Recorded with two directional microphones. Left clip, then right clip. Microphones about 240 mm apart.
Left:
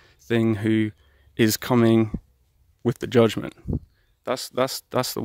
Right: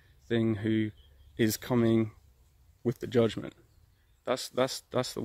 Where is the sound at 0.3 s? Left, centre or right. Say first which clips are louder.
Left 7 dB; left.